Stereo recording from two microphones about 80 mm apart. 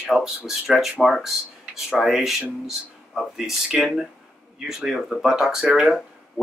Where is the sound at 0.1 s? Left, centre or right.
Centre.